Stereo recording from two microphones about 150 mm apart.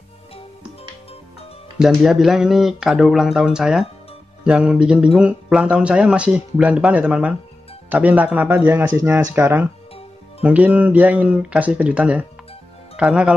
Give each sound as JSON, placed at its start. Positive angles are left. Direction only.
{"t": 1.8, "sound": "speech", "side_deg": 0}